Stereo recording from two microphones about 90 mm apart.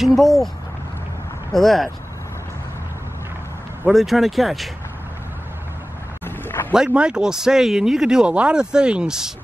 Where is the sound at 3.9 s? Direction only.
Centre (ahead or behind).